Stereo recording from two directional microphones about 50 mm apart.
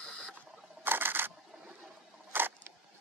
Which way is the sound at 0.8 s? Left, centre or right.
Right.